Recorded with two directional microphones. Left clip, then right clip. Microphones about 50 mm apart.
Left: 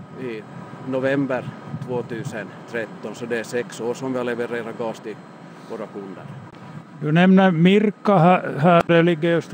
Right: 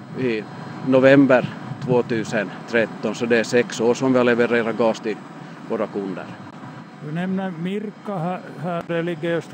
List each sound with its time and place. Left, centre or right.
0.2 s speech: right
7.2 s a man's voice: left